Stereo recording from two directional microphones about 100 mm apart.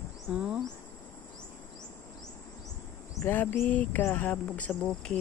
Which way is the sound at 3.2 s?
20° left (ahead or behind).